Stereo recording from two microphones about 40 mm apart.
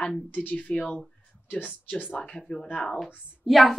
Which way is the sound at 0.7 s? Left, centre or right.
Left.